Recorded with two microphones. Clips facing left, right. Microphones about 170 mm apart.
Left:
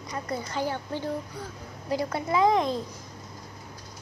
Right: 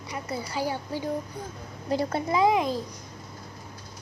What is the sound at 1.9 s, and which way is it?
Speech, 25° right (ahead or behind).